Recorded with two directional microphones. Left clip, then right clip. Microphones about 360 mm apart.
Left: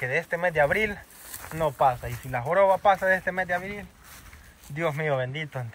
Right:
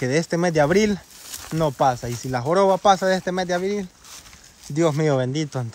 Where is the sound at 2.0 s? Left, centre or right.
Right.